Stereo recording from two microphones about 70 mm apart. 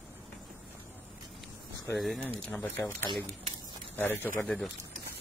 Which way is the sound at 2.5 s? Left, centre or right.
Left.